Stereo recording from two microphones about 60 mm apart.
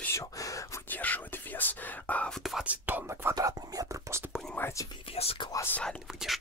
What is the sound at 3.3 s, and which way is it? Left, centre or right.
Whispering, right.